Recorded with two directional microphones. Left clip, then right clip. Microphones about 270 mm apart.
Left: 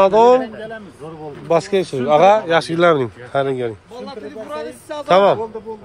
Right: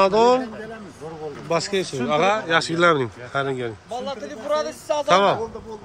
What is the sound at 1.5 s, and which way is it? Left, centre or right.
A man's voice, centre.